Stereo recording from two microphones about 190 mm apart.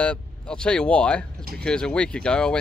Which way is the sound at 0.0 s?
5° left (ahead or behind).